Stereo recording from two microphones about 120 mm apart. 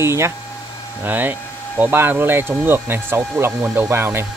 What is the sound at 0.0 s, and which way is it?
Speech, 20° right (ahead or behind).